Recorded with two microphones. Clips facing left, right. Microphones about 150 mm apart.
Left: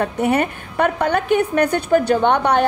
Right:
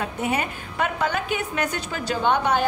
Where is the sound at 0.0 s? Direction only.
60° left (ahead or behind).